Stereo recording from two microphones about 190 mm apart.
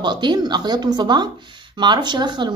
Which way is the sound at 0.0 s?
25° right (ahead or behind).